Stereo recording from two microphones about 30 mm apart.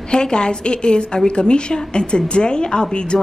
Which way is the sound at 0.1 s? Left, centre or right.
Left.